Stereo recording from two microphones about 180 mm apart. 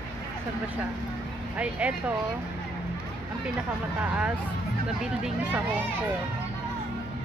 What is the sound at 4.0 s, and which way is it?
Speech, 10° right (ahead or behind).